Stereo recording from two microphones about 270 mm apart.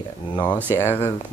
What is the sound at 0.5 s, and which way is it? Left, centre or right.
Speech, centre.